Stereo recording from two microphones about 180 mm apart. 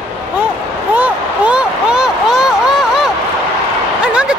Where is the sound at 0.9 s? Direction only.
5° right (ahead or behind).